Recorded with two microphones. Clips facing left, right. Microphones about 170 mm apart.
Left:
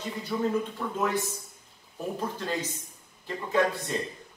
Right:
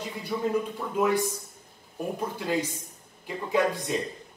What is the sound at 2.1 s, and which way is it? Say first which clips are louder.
A man's voice: right 3 dB; 10° right (ahead or behind).